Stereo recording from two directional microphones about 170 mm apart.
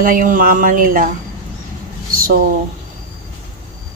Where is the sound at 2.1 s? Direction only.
55° right (ahead or behind).